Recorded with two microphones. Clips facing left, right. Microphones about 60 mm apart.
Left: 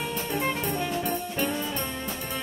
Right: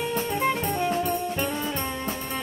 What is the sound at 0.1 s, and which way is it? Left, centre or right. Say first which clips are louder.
Music: right 3 dB; right.